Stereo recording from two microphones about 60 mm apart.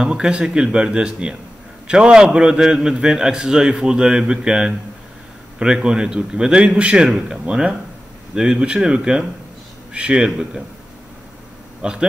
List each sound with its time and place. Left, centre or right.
0.0 s a man's voice: centre
11.8 s a man's voice: centre